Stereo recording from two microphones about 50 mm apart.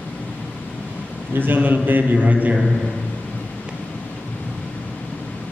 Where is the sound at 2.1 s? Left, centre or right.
Right.